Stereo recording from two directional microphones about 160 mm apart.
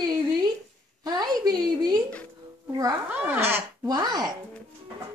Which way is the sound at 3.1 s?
10° right (ahead or behind).